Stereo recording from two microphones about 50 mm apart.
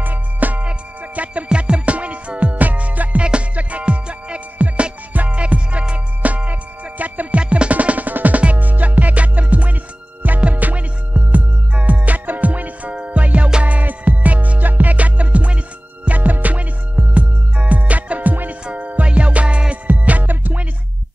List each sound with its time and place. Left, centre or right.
0.0 s music: right
19.9 s music: right